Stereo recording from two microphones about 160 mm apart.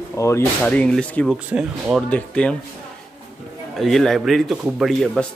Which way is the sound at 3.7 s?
Centre (ahead or behind).